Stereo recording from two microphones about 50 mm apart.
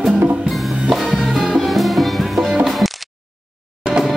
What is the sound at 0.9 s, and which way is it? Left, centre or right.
Music, centre.